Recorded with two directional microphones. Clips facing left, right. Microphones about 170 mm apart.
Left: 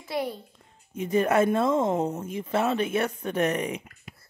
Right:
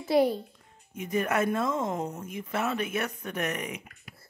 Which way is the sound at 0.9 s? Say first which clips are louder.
Left 5 dB; 30° left (ahead or behind).